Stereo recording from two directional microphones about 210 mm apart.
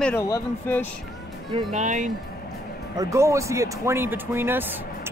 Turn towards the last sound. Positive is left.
turn(degrees=-10)  # may be behind; listen again after turning